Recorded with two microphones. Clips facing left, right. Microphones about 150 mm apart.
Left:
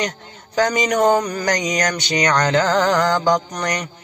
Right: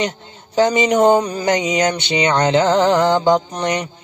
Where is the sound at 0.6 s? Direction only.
25° right (ahead or behind).